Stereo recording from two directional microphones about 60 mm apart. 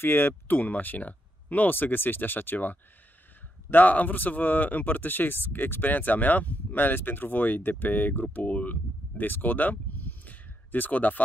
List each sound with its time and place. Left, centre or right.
0.0 s speech: left